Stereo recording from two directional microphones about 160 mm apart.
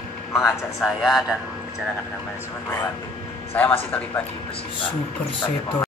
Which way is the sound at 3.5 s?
10° left (ahead or behind).